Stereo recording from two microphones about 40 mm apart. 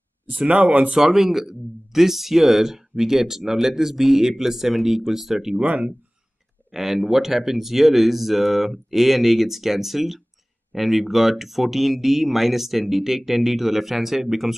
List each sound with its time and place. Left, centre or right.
0.3 s speech: right
0.9 s speech: centre
6.7 s speech: centre